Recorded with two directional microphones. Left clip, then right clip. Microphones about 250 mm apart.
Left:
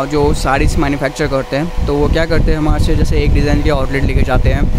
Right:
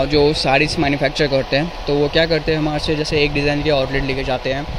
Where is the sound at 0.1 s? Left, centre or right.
Centre.